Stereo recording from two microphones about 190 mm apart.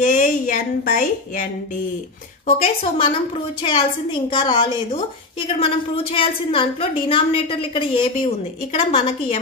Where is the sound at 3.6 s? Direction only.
25° left (ahead or behind).